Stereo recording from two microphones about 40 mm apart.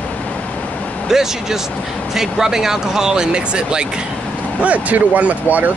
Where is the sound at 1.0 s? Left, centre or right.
Centre.